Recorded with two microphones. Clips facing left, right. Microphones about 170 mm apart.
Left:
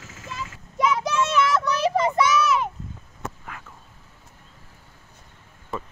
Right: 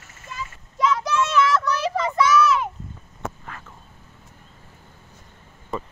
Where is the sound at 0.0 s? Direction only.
90° left.